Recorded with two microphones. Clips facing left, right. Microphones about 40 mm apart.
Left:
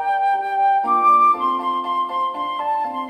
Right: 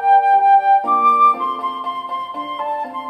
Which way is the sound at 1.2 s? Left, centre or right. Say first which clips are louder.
Right 1 dB; centre.